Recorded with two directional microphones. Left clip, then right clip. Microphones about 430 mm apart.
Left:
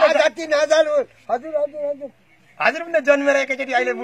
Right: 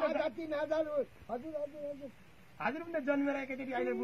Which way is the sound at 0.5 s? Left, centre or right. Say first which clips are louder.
Left 19 dB; centre.